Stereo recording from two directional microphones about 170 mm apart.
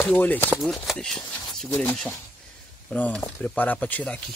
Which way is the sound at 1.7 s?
10° left (ahead or behind).